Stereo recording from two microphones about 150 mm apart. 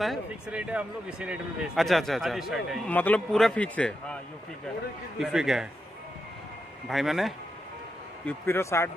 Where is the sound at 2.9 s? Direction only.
10° left (ahead or behind).